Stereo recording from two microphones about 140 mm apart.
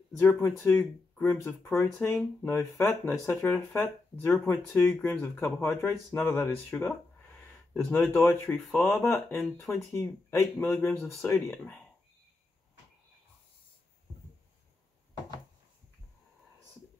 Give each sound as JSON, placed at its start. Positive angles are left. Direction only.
{"t": 0.2, "sound": "speech", "side_deg": 15}
{"t": 9.4, "sound": "speech", "side_deg": 0}
{"t": 9.9, "sound": "speech", "side_deg": 20}
{"t": 11.5, "sound": "speech", "side_deg": 10}